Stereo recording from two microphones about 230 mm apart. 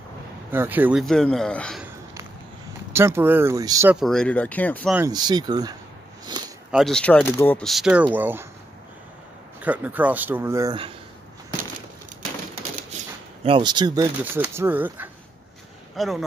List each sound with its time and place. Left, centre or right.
0.5 s speech: centre
2.9 s speech: centre
3.9 s speech: centre
4.9 s speech: centre
6.7 s speech: centre
9.6 s speech: centre
13.4 s speech: right; by 16.1 s centre